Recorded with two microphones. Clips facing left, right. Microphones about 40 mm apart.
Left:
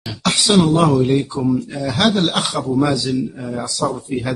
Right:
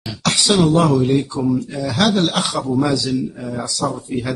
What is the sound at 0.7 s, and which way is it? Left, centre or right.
A man's voice, centre.